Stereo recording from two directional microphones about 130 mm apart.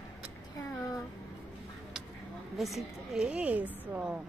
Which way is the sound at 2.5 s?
Centre (ahead or behind).